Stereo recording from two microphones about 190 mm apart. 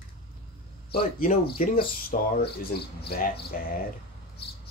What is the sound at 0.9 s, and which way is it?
Speech, 50° left (ahead or behind).